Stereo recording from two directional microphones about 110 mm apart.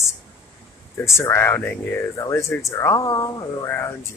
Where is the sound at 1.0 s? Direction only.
25° left (ahead or behind).